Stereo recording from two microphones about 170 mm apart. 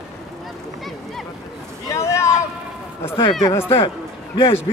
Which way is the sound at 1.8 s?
15° left (ahead or behind).